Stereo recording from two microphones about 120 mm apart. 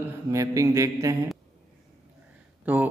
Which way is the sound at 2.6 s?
15° right (ahead or behind).